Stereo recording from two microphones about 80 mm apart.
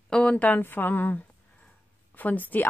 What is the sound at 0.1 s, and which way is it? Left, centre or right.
A woman's voice, centre.